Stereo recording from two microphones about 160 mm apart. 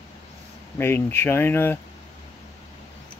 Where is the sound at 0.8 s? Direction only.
15° left (ahead or behind).